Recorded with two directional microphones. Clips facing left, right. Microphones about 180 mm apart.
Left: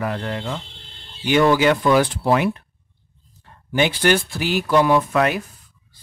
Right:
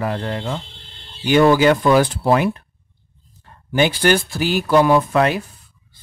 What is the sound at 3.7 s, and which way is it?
Speech, 40° right (ahead or behind).